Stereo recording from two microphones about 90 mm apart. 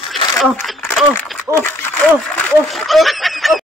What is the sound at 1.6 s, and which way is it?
Speech, 25° left (ahead or behind).